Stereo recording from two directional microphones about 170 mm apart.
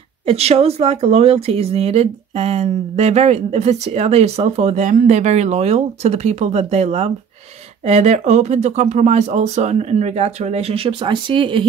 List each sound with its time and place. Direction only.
0.3 s speech: 35° right (ahead or behind)